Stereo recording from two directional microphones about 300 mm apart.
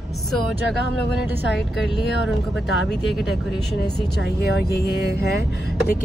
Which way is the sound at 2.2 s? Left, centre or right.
Centre.